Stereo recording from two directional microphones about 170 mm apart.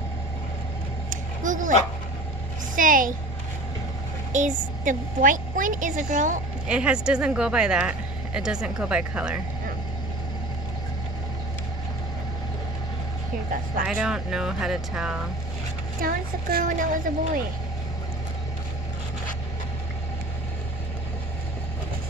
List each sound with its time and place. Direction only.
1.1 s a sound: 50° right (ahead or behind)
2.7 s a woman's voice: 50° right (ahead or behind)
4.3 s a woman's voice: 45° right (ahead or behind)
6.7 s speech: 5° right (ahead or behind)
13.8 s speech: 5° right (ahead or behind)
16.0 s speech: 60° right (ahead or behind)